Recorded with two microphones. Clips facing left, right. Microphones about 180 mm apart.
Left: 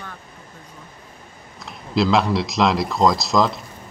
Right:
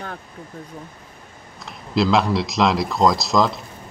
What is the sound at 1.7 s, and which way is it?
Speech, centre (ahead or behind).